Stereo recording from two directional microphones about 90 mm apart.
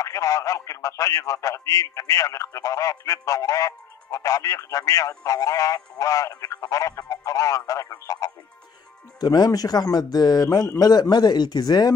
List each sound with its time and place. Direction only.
0.0 s speech: 35° left (ahead or behind)
9.2 s speech: 50° left (ahead or behind)